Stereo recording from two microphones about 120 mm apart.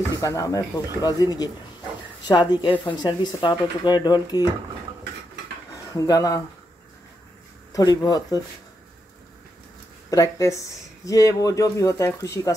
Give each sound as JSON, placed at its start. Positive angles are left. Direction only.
{"t": 0.2, "sound": "speech", "side_deg": 25}
{"t": 5.9, "sound": "speech", "side_deg": 30}
{"t": 7.7, "sound": "speech", "side_deg": 30}
{"t": 10.0, "sound": "speech", "side_deg": 30}